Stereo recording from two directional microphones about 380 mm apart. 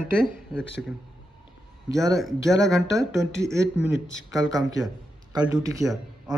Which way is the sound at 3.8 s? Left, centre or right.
Left.